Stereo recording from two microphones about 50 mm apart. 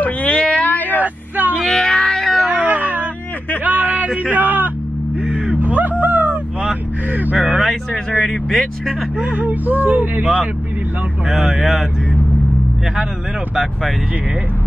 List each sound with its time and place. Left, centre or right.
0.0 s a sound: left
0.7 s vehicle: left
1.0 s vehicle: right
1.6 s a sound: centre
2.5 s a sound: right
6.7 s vehicle: right
7.9 s vehicle: centre
9.2 s speech: right
10.2 s speech: right